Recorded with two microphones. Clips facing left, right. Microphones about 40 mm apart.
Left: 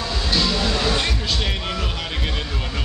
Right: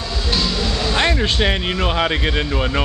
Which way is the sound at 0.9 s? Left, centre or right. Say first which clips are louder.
Right 6 dB; right.